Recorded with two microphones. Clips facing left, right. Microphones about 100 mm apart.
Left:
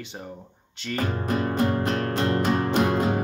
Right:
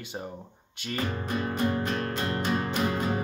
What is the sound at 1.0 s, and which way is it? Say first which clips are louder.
Music: left 5 dB; 50° left (ahead or behind).